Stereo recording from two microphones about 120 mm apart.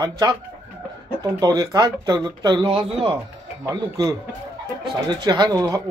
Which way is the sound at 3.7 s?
30° right (ahead or behind).